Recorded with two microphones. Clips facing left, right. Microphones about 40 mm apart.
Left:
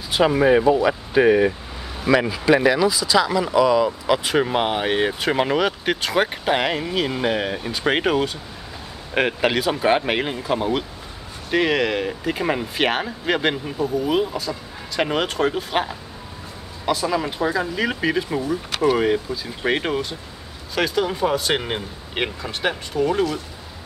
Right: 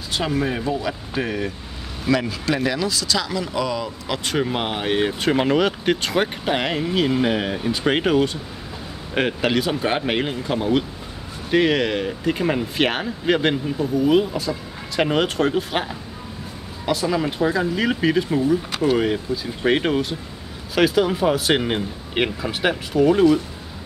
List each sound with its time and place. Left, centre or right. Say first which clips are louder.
0.1 s speech: left 7 dB; centre